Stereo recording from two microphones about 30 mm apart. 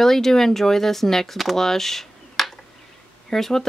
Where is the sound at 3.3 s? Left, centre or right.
Centre.